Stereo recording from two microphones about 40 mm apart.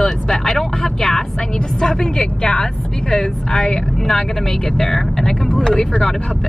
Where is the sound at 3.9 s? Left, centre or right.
Centre.